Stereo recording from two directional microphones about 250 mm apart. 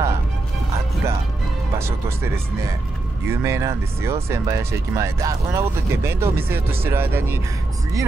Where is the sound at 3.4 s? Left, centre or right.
Centre.